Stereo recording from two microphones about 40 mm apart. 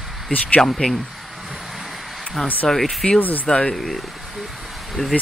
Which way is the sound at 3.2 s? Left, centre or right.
Left.